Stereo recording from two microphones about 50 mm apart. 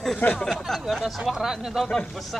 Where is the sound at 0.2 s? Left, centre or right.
Left.